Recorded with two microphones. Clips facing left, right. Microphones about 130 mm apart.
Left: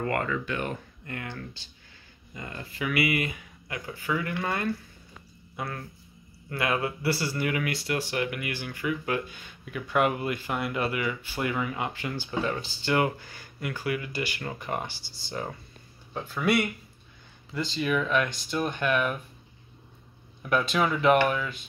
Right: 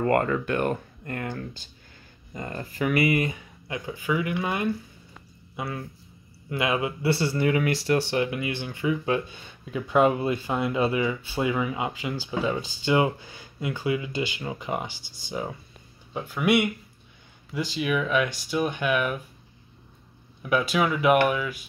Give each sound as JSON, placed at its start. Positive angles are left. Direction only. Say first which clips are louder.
{"t": 0.0, "sound": "speech", "louder": "right 6 dB", "side_deg": -40}
{"t": 6.5, "sound": "speech", "louder": "right 2 dB", "side_deg": -20}
{"t": 20.4, "sound": "speech", "louder": "right 2 dB", "side_deg": -5}